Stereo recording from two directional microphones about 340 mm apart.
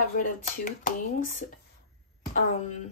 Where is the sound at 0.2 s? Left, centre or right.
Left.